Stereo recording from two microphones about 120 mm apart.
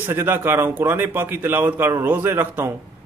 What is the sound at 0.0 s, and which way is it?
A man's voice, 20° right (ahead or behind).